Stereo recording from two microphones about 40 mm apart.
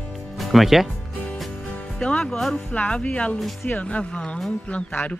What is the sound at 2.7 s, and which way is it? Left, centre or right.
Speech, left.